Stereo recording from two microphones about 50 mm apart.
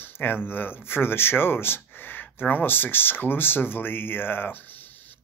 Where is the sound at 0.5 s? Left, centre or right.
Left.